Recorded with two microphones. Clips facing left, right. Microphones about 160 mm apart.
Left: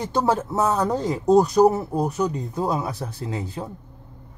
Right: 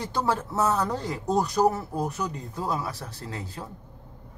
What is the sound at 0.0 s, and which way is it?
Speech, 20° left (ahead or behind).